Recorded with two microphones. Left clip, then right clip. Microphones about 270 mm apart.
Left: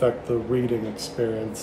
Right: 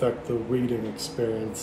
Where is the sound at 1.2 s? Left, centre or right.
Centre.